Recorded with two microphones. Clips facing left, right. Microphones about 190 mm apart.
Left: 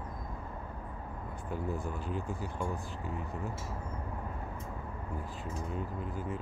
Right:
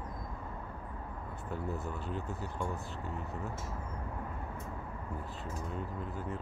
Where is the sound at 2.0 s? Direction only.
5° left (ahead or behind).